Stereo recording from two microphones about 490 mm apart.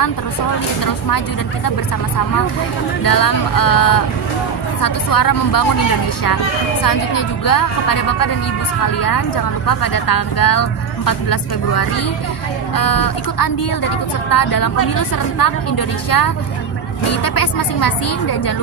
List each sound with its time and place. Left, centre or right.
3.0 s speech: left
6.8 s speech: left
9.7 s speech: left
16.1 s speech: left